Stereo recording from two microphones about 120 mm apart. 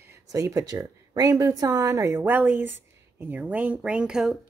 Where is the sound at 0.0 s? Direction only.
25° right (ahead or behind); by 4.4 s 5° right (ahead or behind).